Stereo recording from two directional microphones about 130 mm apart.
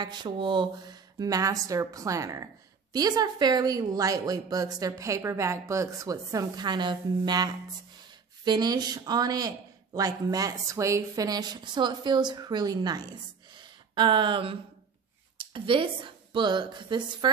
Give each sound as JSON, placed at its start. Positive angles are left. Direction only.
{"t": 0.0, "sound": "a woman's voice", "side_deg": -35}
{"t": 13.6, "sound": "a sound", "side_deg": -35}
{"t": 15.3, "sound": "speech", "side_deg": -40}